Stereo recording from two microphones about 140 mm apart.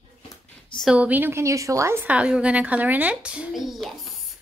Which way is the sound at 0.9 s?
10° right (ahead or behind).